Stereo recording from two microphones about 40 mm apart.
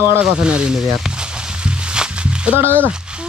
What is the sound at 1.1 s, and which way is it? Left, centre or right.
Music, right.